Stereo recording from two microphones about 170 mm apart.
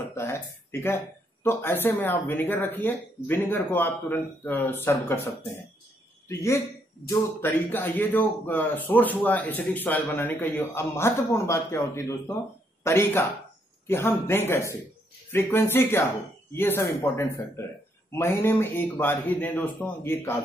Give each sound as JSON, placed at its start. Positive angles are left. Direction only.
{"t": 0.0, "sound": "a man's voice", "side_deg": 15}